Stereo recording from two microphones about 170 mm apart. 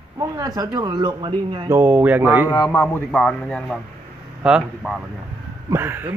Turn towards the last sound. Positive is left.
turn(degrees=-15)  # may be behind; listen again after turning